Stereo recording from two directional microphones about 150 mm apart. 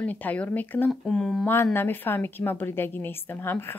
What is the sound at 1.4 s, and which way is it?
Speech, 15° left (ahead or behind).